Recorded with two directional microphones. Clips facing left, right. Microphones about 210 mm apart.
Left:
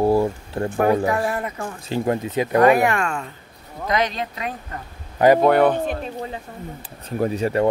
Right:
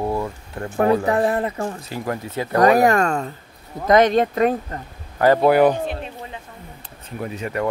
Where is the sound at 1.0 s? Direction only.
30° right (ahead or behind).